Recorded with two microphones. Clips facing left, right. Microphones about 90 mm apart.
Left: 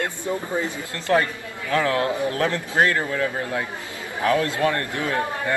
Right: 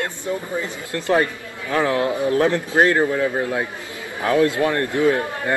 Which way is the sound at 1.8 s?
25° right (ahead or behind).